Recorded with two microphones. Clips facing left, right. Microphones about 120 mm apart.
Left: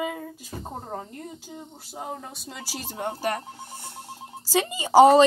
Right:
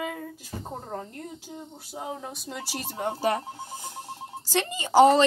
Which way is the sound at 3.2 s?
25° right (ahead or behind).